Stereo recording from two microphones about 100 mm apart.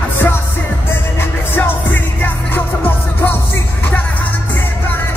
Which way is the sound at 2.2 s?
20° left (ahead or behind).